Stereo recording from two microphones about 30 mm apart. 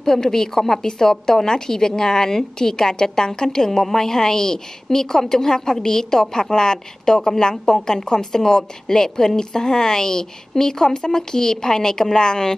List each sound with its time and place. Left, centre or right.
0.0 s a woman's voice: centre